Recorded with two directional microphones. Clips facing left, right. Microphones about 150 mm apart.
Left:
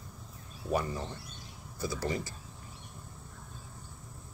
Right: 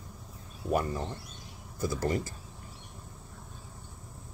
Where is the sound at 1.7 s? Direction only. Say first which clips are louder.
Right 4 dB; 45° right (ahead or behind).